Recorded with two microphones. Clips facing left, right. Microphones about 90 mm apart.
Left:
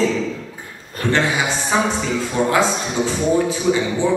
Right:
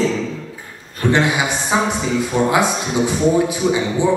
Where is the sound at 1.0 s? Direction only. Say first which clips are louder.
Right 2 dB; 15° right (ahead or behind).